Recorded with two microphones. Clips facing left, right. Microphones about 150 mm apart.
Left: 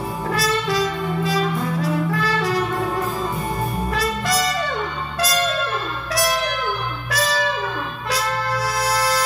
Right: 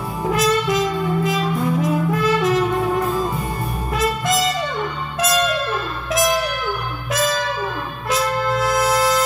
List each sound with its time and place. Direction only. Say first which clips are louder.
0.3 s music: right 4 dB; 20° right (ahead or behind)
3.9 s music: right 5 dB; 20° right (ahead or behind)
8.1 s music: right 4 dB; 20° right (ahead or behind)